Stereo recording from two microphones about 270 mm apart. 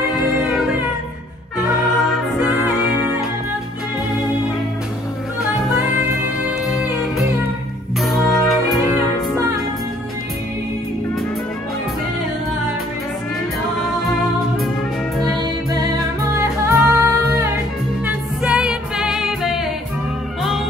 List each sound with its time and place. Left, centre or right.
0.1 s music: centre
6.7 s music: centre
16.3 s music: centre